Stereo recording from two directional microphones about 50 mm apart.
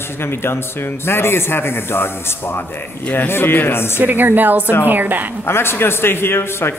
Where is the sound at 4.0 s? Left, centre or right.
Right.